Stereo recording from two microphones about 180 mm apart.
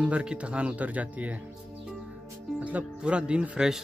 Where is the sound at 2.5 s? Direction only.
10° right (ahead or behind).